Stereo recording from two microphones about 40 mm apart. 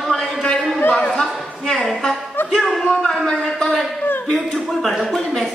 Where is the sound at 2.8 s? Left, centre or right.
Left.